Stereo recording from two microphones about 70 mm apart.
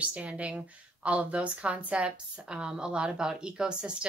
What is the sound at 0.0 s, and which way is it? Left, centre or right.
A woman's voice, centre.